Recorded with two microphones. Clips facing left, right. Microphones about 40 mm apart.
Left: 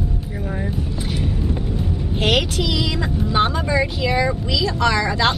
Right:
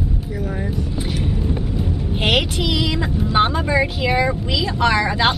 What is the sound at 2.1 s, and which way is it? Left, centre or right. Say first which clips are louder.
Speech: even; centre.